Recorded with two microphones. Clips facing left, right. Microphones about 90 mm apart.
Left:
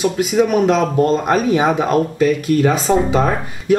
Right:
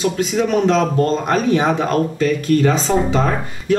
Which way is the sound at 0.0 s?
5° left (ahead or behind).